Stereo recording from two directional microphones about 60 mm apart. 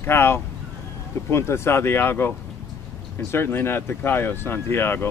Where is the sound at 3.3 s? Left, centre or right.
Left.